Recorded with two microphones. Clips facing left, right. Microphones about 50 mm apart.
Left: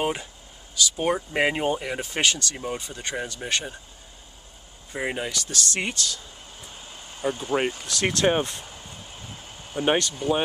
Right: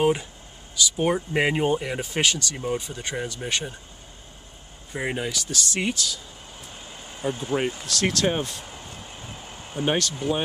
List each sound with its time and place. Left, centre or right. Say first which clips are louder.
0.0 s speech: right 5 dB; centre
4.9 s speech: right 1 dB; centre
7.8 s speech: left 1 dB; centre
9.8 s speech: left 2 dB; centre